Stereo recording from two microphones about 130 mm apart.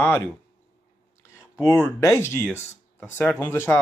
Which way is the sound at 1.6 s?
20° left (ahead or behind).